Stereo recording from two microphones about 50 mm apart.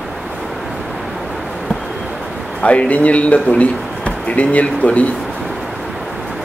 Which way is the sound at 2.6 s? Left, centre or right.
Left.